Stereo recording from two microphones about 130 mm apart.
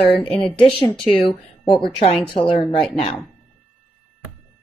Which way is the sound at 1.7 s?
45° left (ahead or behind).